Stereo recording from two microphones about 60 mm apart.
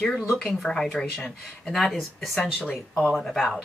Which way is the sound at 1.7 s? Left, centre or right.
Centre.